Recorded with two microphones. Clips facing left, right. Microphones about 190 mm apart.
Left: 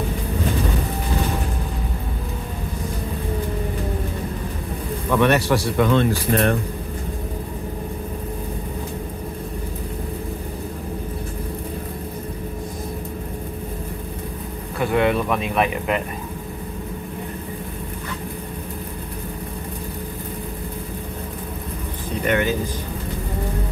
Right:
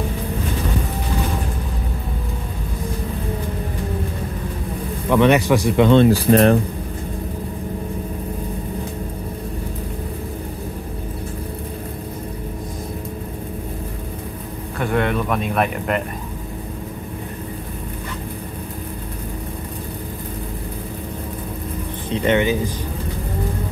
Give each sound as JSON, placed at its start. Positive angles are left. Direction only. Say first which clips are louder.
{"t": 5.1, "sound": "speech", "louder": "right 3 dB", "side_deg": -15}
{"t": 14.8, "sound": "speech", "louder": "left 1 dB", "side_deg": 5}
{"t": 22.2, "sound": "speech", "louder": "right 3 dB", "side_deg": -20}